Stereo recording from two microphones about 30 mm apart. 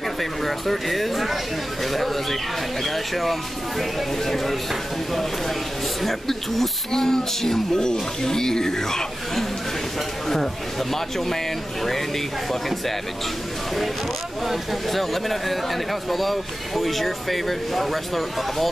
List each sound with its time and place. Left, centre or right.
0.2 s speech: centre
6.0 s speech: centre
10.2 s speech: centre
14.5 s speech: centre